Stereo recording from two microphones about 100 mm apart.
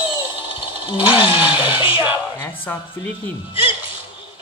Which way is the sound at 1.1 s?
60° left (ahead or behind).